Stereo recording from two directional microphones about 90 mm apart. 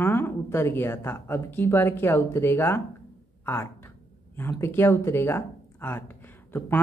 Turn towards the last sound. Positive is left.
turn(degrees=25)  # may be behind; listen again after turning